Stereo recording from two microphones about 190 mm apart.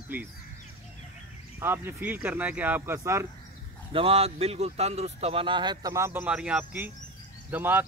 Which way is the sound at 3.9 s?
30° right (ahead or behind).